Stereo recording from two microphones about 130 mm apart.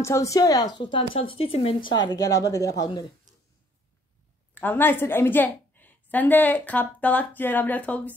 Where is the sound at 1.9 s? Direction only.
35° left (ahead or behind).